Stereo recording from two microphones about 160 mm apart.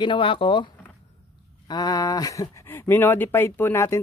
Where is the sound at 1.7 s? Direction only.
25° left (ahead or behind).